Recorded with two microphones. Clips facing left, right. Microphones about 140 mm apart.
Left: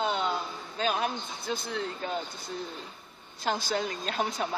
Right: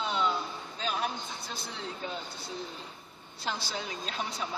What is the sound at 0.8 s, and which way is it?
Speech, 60° left (ahead or behind).